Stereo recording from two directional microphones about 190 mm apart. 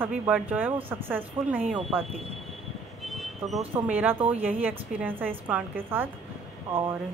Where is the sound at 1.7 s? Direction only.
Centre (ahead or behind).